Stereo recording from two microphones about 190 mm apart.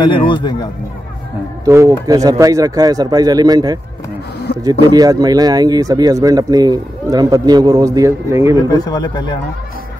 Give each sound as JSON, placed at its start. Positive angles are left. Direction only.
{"t": 0.0, "sound": "speech", "side_deg": 25}
{"t": 1.7, "sound": "speech", "side_deg": -15}
{"t": 8.6, "sound": "speech", "side_deg": 20}